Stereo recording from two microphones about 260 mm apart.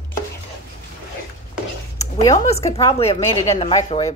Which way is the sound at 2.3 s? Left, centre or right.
Left.